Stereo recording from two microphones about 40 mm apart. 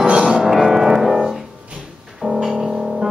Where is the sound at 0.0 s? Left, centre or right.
Right.